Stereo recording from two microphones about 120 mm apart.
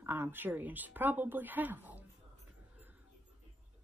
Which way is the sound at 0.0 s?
20° right (ahead or behind).